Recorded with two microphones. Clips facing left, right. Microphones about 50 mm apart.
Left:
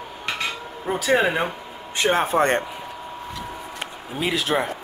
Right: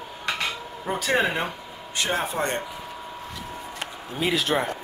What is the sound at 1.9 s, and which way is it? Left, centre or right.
Speech, left.